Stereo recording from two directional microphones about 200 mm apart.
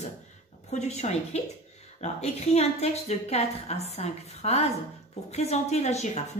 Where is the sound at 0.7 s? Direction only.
35° left (ahead or behind).